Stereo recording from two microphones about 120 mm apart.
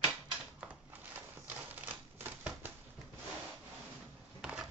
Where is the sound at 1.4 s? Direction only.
15° right (ahead or behind).